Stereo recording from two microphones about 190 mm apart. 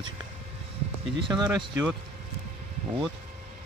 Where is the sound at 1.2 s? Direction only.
25° right (ahead or behind).